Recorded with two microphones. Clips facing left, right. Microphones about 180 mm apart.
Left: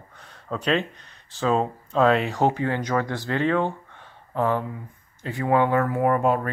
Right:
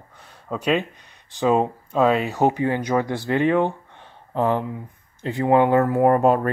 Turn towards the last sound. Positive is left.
turn(degrees=-40)  # may be behind; listen again after turning